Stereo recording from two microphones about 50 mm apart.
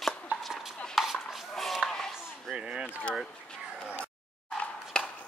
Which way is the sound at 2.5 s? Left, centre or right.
Centre.